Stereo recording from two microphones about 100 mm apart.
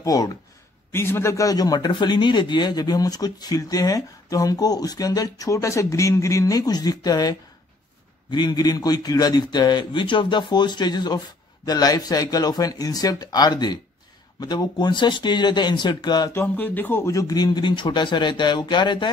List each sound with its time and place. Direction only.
0.0 s a man's voice: 40° left (ahead or behind)
0.9 s a man's voice: 25° left (ahead or behind); by 16.3 s 45° left (ahead or behind)
16.3 s speech: 20° left (ahead or behind)
17.1 s a man's voice: 35° left (ahead or behind)